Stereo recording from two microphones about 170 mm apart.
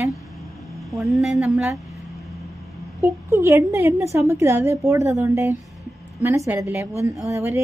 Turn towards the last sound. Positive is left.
turn(degrees=-15)  # may be behind; listen again after turning